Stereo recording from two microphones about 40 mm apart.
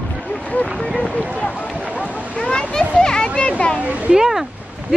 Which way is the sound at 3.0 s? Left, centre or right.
Centre.